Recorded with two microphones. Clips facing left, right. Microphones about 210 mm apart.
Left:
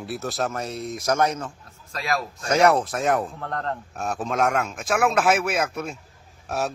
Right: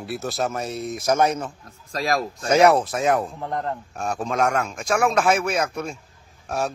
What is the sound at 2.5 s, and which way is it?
Speech, 5° right (ahead or behind).